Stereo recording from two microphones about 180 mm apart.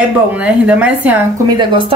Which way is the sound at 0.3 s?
5° right (ahead or behind).